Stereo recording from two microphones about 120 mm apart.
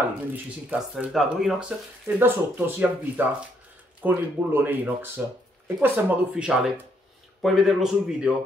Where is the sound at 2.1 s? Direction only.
15° right (ahead or behind).